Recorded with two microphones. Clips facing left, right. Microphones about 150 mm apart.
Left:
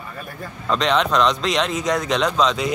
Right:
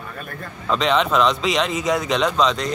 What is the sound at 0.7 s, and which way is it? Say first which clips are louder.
Speech: even; centre (ahead or behind).